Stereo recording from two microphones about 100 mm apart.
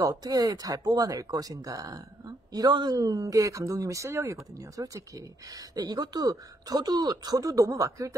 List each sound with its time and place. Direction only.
0.0 s speech: 40° right (ahead or behind)